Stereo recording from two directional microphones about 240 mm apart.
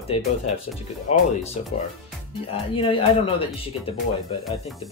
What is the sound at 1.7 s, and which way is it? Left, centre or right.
Speech, left.